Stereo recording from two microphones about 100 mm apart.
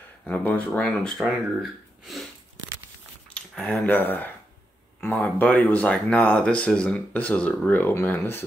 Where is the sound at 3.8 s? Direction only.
20° left (ahead or behind).